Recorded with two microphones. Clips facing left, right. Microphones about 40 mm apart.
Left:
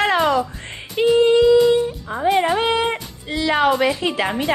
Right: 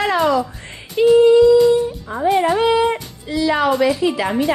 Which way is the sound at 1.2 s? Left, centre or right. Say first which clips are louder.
Right 2 dB; left.